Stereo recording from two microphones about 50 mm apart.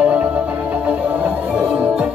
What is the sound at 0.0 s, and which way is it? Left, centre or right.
Music, right.